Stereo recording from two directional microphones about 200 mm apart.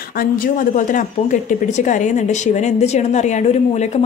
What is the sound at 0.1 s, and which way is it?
Speech, 45° left (ahead or behind).